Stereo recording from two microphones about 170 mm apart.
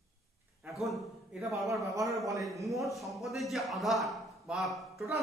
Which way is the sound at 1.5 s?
20° right (ahead or behind).